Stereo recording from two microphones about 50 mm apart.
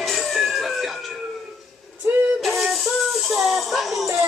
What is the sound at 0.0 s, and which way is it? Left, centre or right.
Emergency vehicle, centre.